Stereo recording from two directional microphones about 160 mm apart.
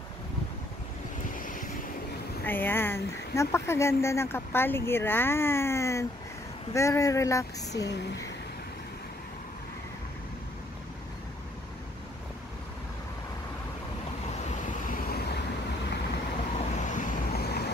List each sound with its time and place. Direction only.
1.3 s vehicle: 55° left (ahead or behind)
2.4 s speech: 10° left (ahead or behind)
7.8 s speech: 90° left
14.5 s vehicle: 55° left (ahead or behind); by 15.4 s 85° left
16.5 s vehicle: 50° left (ahead or behind); by 17.6 s 90° left